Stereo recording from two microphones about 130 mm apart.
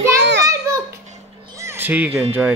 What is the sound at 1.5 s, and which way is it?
Music, 20° right (ahead or behind).